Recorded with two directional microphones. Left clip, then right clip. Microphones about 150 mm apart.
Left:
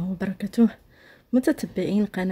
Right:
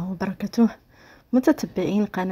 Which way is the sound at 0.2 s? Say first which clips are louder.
Right 1 dB; 15° left (ahead or behind).